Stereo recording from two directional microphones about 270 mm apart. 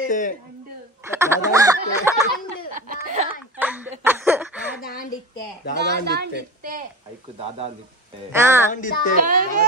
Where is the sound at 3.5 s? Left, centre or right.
Centre.